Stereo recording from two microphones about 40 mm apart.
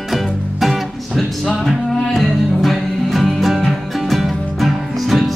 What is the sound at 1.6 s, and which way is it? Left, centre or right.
Music, centre.